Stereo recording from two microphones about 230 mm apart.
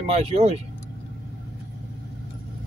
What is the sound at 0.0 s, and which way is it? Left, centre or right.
Speech, right.